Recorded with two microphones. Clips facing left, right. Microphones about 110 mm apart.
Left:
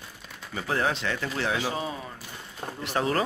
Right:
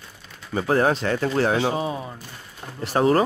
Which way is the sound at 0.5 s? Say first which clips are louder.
Right 8 dB; 40° right (ahead or behind).